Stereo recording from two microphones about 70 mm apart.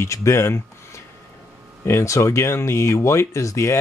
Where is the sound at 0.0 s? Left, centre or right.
Left.